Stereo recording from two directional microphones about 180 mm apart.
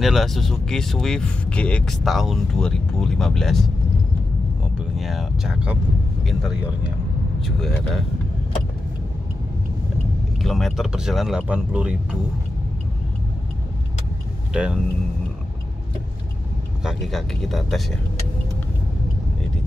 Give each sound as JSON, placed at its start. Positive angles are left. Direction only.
{"t": 0.0, "sound": "speech", "side_deg": 0}
{"t": 4.9, "sound": "speech", "side_deg": 0}
{"t": 10.4, "sound": "speech", "side_deg": 0}
{"t": 14.5, "sound": "speech", "side_deg": -5}
{"t": 16.8, "sound": "speech", "side_deg": 0}